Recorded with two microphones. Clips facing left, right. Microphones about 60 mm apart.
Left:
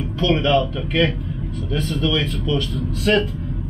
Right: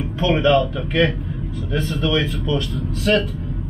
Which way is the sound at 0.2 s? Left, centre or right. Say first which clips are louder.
Right 2 dB; centre.